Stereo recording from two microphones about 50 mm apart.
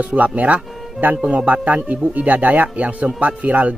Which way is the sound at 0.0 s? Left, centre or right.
Right.